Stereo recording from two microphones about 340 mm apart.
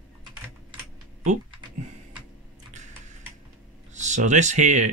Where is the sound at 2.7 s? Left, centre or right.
Right.